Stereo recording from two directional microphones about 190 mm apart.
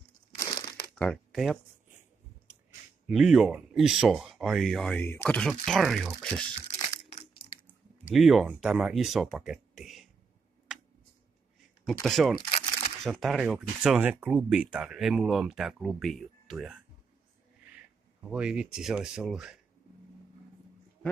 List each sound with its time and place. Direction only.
0.9 s speech: 5° left (ahead or behind)
3.1 s speech: 5° right (ahead or behind)
7.4 s a sound: 35° left (ahead or behind)
8.1 s speech: centre (ahead or behind)
11.9 s speech: centre (ahead or behind)
12.4 s crumpling: 30° left (ahead or behind)
13.0 s speech: centre (ahead or behind)
18.3 s speech: 5° right (ahead or behind)